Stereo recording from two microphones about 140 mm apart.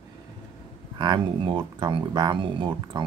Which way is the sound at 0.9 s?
35° right (ahead or behind).